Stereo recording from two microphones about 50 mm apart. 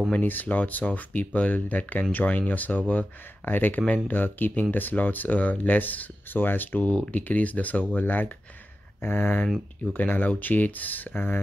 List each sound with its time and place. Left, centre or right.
0.2 s speech: left